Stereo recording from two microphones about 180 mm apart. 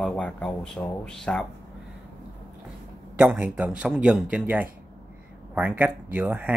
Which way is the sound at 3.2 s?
5° right (ahead or behind).